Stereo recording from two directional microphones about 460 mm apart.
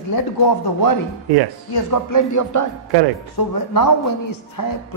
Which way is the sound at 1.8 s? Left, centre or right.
Left.